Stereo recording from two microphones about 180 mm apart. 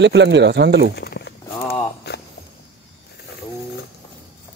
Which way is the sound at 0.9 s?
65° left (ahead or behind).